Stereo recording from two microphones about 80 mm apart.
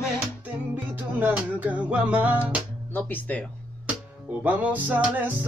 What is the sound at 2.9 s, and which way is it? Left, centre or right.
Speech, left.